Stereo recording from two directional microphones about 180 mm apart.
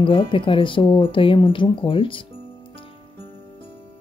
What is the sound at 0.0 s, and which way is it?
Speech, 30° left (ahead or behind).